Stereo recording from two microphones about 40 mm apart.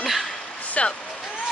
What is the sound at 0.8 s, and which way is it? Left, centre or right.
Speech, left.